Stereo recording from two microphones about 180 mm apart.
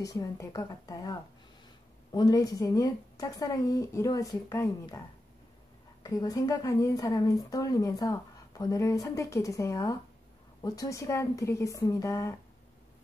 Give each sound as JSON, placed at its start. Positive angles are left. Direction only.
{"t": 0.0, "sound": "speech", "side_deg": 20}
{"t": 2.1, "sound": "speech", "side_deg": 20}
{"t": 6.0, "sound": "speech", "side_deg": 20}